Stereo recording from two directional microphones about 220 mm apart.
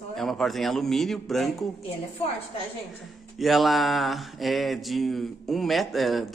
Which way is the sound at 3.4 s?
Centre (ahead or behind).